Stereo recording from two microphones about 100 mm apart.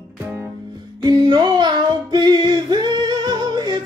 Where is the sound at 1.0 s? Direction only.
45° right (ahead or behind).